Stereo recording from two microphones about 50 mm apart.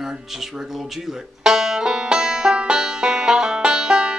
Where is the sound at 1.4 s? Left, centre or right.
Centre.